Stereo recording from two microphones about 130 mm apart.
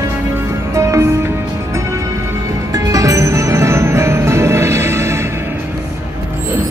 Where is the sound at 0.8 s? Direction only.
20° right (ahead or behind).